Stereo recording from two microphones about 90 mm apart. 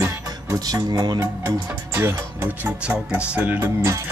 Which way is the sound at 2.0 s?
20° right (ahead or behind).